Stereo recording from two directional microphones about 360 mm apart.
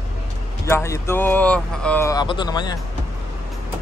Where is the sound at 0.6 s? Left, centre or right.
Centre.